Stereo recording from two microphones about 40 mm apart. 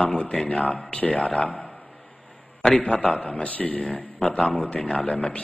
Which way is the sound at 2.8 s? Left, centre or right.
Left.